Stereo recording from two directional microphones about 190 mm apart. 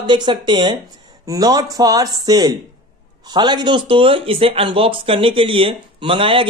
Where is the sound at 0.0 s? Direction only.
25° right (ahead or behind).